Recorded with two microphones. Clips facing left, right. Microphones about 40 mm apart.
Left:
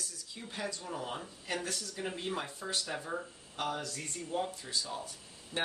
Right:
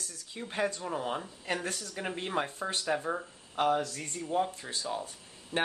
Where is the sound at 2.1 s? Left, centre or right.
Right.